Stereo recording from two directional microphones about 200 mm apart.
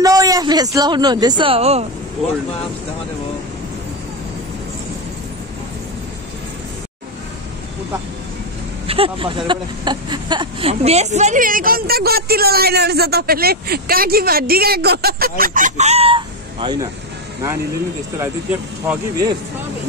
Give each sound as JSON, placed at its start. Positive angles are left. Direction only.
{"t": 0.0, "sound": "speech", "side_deg": -15}
{"t": 8.8, "sound": "speech", "side_deg": -30}
{"t": 18.1, "sound": "speech", "side_deg": -10}